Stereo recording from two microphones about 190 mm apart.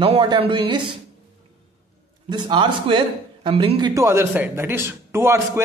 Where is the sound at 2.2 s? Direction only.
25° right (ahead or behind).